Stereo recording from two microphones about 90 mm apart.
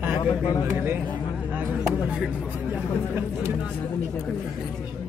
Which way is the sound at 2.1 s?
15° right (ahead or behind).